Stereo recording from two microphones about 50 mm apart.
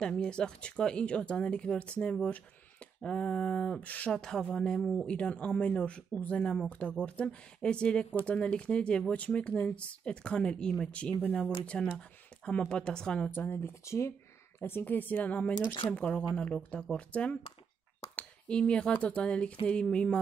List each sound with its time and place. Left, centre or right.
0.0 s speech: centre
2.2 s speech: left
3.0 s a sound: centre
3.8 s speech: left
4.1 s a sound: centre
5.0 s speech: left
11.1 s speech: left
11.6 s speech: left
13.3 s speech: left
13.8 s speech: left
14.6 s speech: left